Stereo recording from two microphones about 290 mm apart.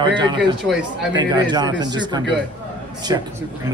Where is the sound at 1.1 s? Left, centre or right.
Centre.